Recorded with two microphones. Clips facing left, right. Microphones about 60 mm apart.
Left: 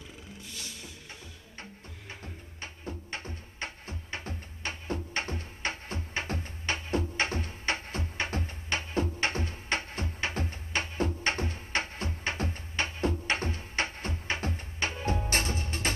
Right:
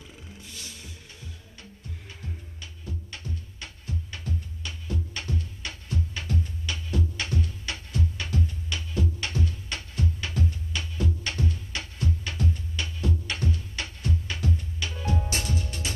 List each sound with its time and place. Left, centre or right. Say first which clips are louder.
2.6 s music: left 3 dB; left